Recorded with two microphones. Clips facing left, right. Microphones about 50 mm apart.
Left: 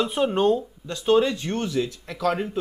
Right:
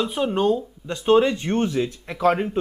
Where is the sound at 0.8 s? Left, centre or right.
Right.